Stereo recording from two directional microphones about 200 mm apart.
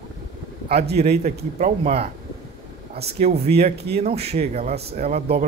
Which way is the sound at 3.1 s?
30° right (ahead or behind).